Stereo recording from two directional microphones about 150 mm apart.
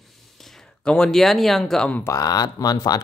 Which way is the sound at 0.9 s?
5° left (ahead or behind).